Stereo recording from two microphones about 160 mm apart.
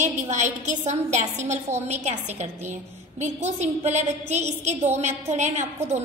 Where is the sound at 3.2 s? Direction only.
45° right (ahead or behind).